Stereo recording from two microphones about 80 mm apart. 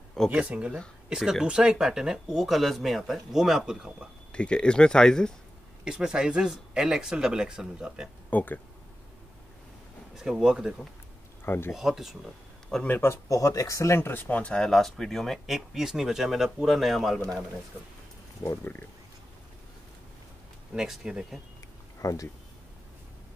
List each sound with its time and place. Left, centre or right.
0.3 s speech: centre
4.3 s speech: centre
5.9 s speech: centre
8.3 s speech: left
10.1 s speech: centre
11.4 s speech: left
11.7 s speech: centre
12.8 s speech: left
13.1 s speech: left; by 17.2 s centre
18.6 s speech: left
20.7 s speech: centre
22.0 s speech: left